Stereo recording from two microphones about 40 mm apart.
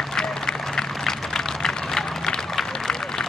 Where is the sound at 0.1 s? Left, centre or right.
Centre.